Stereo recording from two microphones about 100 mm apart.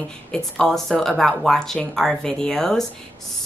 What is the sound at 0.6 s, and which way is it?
Speech, 5° left (ahead or behind).